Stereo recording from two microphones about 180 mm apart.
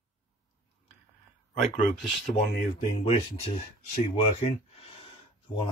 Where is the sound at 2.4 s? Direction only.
60° left (ahead or behind).